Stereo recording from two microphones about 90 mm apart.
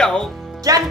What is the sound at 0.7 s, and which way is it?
Speech, 40° right (ahead or behind).